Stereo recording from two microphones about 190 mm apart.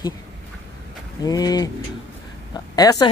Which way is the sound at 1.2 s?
20° left (ahead or behind).